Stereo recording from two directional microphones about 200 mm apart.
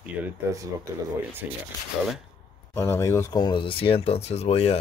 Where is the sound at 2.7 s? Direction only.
10° left (ahead or behind).